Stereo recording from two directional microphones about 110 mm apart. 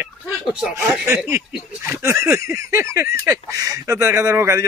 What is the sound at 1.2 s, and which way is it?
Speech, 25° right (ahead or behind).